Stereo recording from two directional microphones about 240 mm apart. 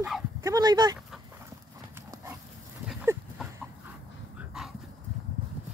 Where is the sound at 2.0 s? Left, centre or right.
Centre.